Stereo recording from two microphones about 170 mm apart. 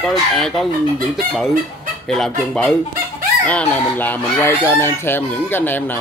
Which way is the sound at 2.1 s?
5° left (ahead or behind).